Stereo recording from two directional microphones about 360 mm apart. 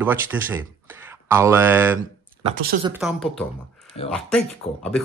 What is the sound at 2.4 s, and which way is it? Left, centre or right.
Speech, right.